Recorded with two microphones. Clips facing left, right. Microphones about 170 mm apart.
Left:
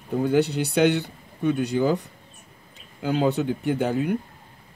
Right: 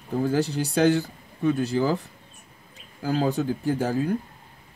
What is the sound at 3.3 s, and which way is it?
Speech, 20° left (ahead or behind).